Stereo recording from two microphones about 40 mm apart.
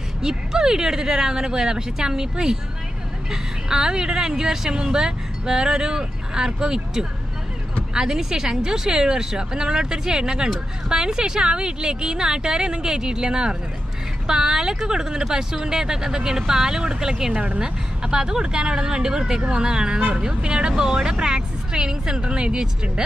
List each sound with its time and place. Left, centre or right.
0.2 s a woman's voice: centre